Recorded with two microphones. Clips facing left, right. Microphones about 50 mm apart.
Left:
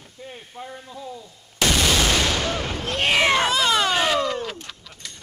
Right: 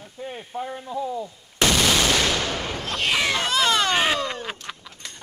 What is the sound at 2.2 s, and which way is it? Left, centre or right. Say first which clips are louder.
Gunshot: left 1 dB; centre.